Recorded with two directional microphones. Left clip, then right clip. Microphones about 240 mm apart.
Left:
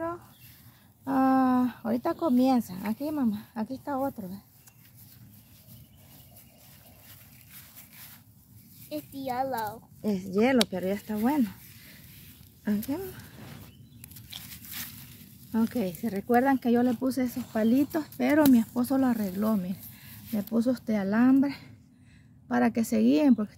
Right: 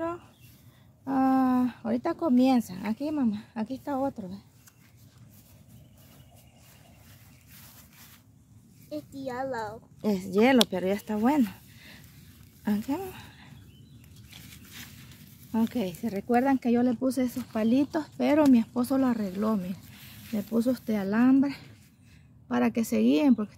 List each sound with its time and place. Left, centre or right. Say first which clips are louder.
1.0 s speech: left 1 dB; centre
8.9 s a child's voice: left 3 dB; centre
10.0 s speech: right 3 dB; centre
12.6 s speech: right 1 dB; centre
14.3 s a sound: left 7 dB; centre
15.7 s speech: even; centre